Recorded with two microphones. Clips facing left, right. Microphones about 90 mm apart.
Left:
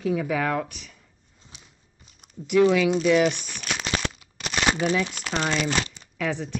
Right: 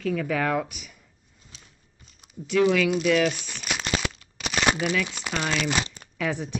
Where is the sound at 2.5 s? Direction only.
20° left (ahead or behind).